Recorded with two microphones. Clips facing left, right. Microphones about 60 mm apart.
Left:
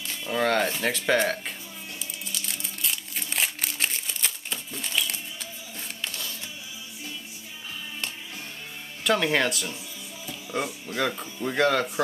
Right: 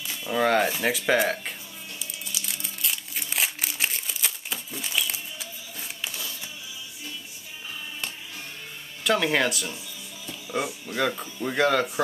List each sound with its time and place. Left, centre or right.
0.1 s speech: centre
2.0 s crumpling: centre
9.0 s speech: centre